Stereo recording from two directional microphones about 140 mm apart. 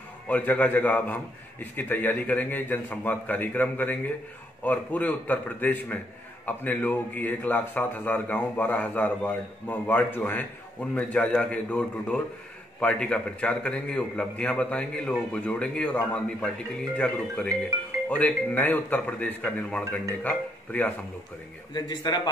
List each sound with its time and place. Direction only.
0.3 s a man's voice: 15° left (ahead or behind)
21.7 s a man's voice: 30° left (ahead or behind)